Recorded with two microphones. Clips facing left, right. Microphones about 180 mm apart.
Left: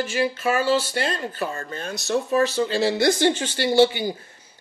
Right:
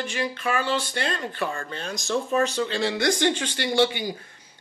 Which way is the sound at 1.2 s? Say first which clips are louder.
Left 1 dB; 40° left (ahead or behind).